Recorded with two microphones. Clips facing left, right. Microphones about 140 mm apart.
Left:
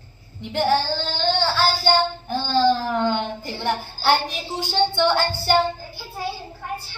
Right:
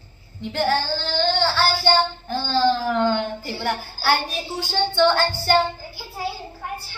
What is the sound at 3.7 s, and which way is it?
Speech, 15° left (ahead or behind).